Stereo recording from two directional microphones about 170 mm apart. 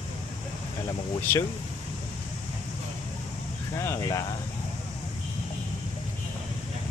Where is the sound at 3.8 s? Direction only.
20° left (ahead or behind).